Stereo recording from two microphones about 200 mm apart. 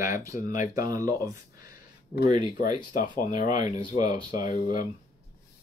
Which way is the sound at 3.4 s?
40° left (ahead or behind).